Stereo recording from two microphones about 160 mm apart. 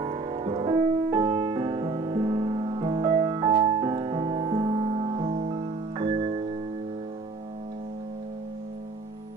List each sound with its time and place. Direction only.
0.0 s music: 35° right (ahead or behind)